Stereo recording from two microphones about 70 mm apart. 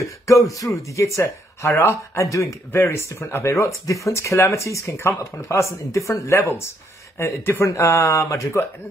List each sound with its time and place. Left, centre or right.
0.3 s speech: left
1.7 s speech: left
2.1 s speech: left
6.3 s speech: left